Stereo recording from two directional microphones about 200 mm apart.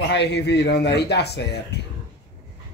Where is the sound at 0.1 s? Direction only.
60° left (ahead or behind).